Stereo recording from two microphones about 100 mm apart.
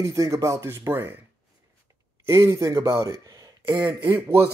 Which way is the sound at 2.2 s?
30° right (ahead or behind).